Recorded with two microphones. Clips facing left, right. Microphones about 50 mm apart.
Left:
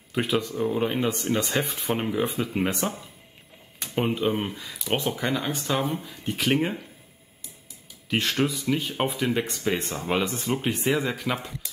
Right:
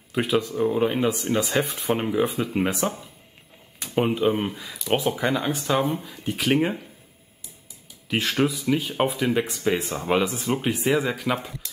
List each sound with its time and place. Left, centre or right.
0.1 s speech: centre
8.1 s speech: centre